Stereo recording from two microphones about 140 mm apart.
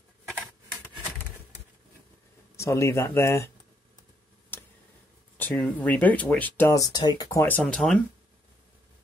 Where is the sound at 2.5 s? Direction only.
20° left (ahead or behind).